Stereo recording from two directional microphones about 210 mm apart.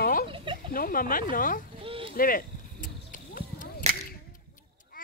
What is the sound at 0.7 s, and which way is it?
Speech, 45° left (ahead or behind).